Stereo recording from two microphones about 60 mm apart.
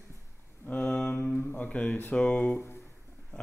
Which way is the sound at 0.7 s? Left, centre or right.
Left.